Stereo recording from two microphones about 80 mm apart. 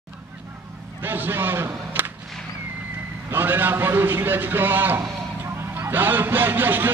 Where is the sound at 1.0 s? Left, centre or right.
Right.